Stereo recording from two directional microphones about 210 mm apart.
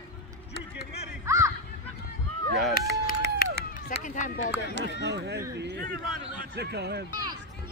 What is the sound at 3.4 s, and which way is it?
Run, 45° left (ahead or behind).